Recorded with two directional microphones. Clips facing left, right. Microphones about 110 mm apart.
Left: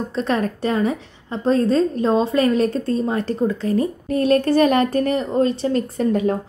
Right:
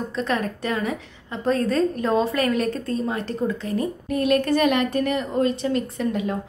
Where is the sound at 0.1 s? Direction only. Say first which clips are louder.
Left 5 dB; 35° left (ahead or behind).